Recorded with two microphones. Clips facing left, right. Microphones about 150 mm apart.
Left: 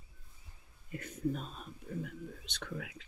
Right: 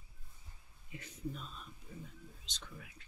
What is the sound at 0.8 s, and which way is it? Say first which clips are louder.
Speech: left 8 dB; 55° left (ahead or behind).